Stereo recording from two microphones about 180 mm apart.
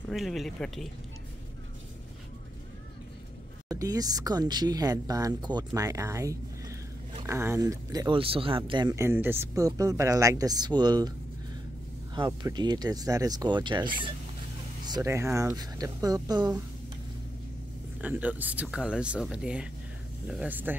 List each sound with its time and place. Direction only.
0.1 s speech: centre (ahead or behind)
3.6 s speech: 20° right (ahead or behind)
18.0 s speech: 10° right (ahead or behind)